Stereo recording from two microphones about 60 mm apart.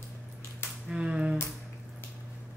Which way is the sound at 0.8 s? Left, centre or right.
Centre.